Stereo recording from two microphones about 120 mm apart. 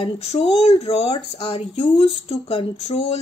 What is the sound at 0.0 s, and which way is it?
Speech, 55° left (ahead or behind).